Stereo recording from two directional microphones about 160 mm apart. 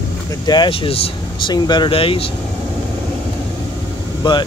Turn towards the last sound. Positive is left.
turn(degrees=30)  # may be behind; listen again after turning